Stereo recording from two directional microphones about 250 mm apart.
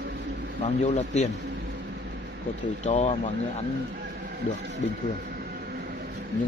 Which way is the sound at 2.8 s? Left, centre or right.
Left.